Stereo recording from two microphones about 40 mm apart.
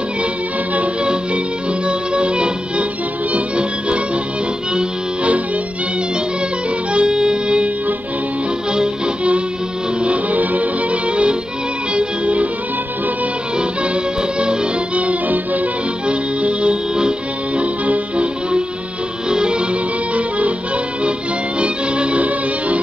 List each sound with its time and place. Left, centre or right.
1.9 s music: right
6.9 s music: right
8.7 s music: right
10.0 s music: right
14.4 s music: right
16.1 s music: right
17.6 s accordion: right
19.2 s music: right
21.5 s music: right